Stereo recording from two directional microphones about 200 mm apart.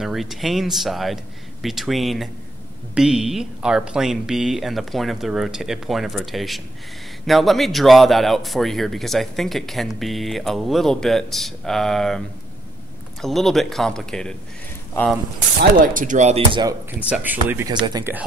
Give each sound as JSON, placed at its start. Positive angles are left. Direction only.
{"t": 0.0, "sound": "a man's voice", "side_deg": 0}
{"t": 13.2, "sound": "a man's voice", "side_deg": 0}
{"t": 15.8, "sound": "speech", "side_deg": -45}
{"t": 17.1, "sound": "speech", "side_deg": -10}